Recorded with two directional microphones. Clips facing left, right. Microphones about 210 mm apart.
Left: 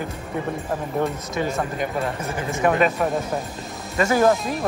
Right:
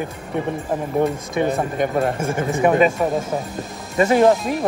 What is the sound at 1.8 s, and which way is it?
Speech, 50° right (ahead or behind).